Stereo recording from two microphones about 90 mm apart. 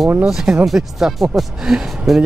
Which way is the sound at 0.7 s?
5° right (ahead or behind).